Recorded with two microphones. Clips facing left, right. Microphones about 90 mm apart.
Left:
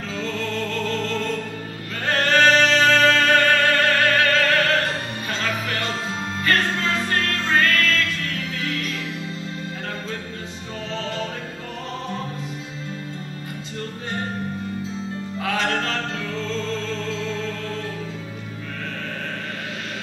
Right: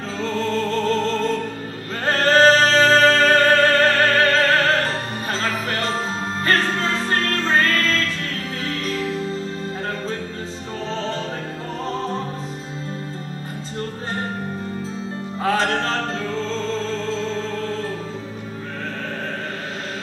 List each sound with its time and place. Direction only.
0.2 s music: 35° right (ahead or behind)
10.9 s music: 30° right (ahead or behind)
15.3 s music: 35° right (ahead or behind)